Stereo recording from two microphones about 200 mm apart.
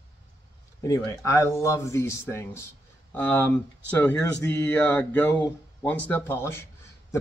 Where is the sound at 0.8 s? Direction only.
15° left (ahead or behind).